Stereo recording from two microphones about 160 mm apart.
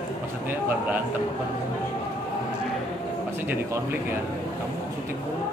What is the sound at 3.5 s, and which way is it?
Speech, 15° right (ahead or behind).